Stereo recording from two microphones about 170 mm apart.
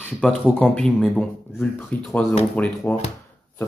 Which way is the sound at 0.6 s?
5° left (ahead or behind).